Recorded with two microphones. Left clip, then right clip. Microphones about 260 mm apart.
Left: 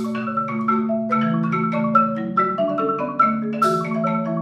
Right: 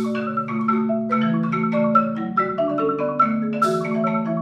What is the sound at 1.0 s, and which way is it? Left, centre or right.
Marimba, left.